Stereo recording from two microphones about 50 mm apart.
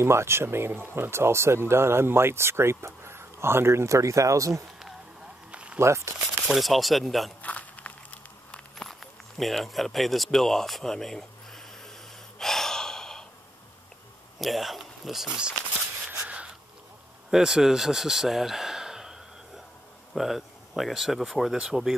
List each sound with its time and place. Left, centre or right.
0.0 s speech: right
5.5 s a sound: right
5.8 s speech: right
6.4 s speech: centre
7.4 s a sound: left
8.7 s speech: centre
12.4 s gasp: centre
14.4 s speech: centre
17.3 s speech: centre